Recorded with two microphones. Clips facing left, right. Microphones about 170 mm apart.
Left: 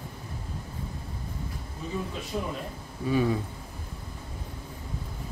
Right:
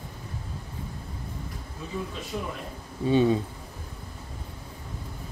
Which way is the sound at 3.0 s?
25° right (ahead or behind).